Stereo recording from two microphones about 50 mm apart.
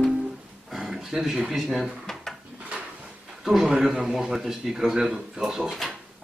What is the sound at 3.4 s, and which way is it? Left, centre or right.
A man's voice, centre.